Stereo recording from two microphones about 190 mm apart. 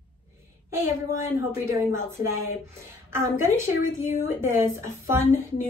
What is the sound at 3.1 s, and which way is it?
A woman's voice, 15° right (ahead or behind).